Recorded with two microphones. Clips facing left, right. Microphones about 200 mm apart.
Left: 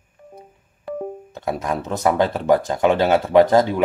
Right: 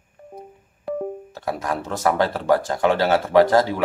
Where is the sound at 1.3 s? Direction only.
20° left (ahead or behind).